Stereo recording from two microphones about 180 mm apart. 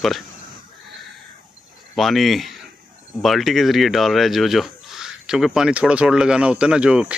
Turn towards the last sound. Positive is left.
turn(degrees=-5)  # may be behind; listen again after turning